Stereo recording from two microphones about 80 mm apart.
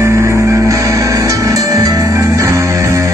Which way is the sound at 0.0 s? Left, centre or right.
Right.